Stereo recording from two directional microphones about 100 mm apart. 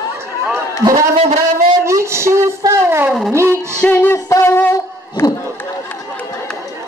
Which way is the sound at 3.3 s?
30° right (ahead or behind).